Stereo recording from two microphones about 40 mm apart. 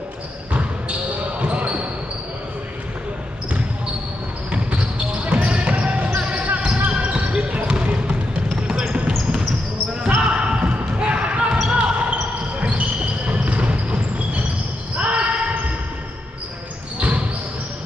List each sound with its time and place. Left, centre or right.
0.5 s basketball bounce: right
4.5 s basketball bounce: right
7.8 s trickle: right
8.6 s basketball bounce: right